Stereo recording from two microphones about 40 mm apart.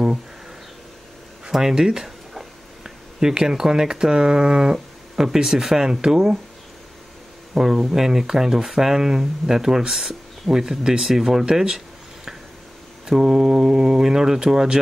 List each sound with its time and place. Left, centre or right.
1.5 s speech: centre
7.5 s speech: centre
13.0 s speech: centre